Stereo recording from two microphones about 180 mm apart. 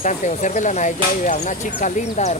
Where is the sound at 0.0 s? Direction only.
40° left (ahead or behind).